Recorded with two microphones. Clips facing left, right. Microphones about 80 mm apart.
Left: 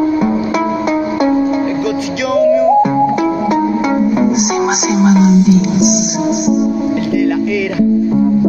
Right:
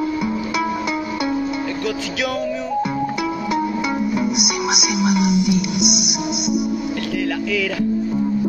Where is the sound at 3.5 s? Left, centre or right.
Left.